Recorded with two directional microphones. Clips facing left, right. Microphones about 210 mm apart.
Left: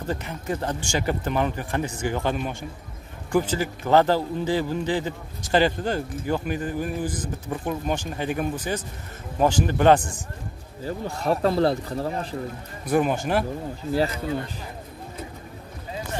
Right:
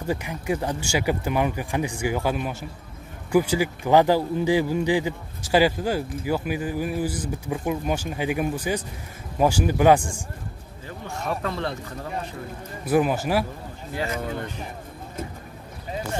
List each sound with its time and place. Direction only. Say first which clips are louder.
0.0 s speech: right 2 dB; 10° right (ahead or behind)
10.9 s speech: left 5 dB; 35° left (ahead or behind)
12.8 s speech: right 1 dB; 5° right (ahead or behind)